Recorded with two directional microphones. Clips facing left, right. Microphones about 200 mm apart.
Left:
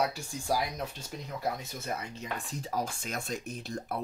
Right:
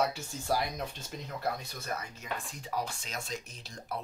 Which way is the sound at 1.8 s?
35° left (ahead or behind).